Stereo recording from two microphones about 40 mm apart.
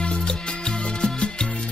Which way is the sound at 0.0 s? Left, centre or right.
Left.